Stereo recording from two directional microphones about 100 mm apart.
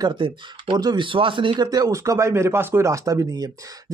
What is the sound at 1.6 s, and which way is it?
Speech, 40° right (ahead or behind).